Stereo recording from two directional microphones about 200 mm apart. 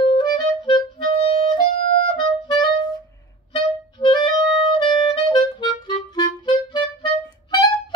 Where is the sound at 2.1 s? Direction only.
20° left (ahead or behind).